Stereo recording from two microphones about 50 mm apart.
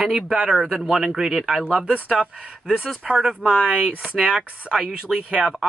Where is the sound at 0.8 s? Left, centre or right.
Centre.